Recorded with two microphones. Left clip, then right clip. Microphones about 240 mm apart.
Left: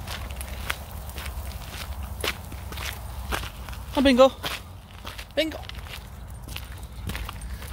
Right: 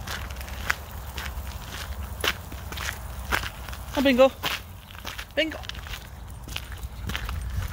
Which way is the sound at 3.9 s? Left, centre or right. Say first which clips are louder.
Left 2 dB; left.